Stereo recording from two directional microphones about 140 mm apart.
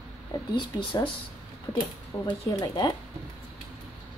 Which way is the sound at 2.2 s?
30° left (ahead or behind).